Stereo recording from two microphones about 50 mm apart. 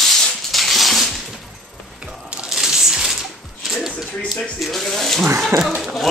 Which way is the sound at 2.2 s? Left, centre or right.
Centre.